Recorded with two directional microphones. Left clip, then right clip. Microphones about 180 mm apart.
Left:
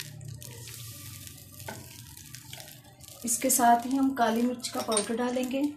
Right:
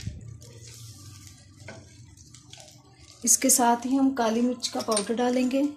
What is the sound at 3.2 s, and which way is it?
A woman's voice, 50° right (ahead or behind).